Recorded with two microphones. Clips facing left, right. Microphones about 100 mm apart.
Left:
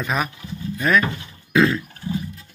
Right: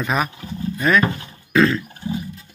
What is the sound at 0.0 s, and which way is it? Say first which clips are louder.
A man's voice: right 2 dB; centre (ahead or behind).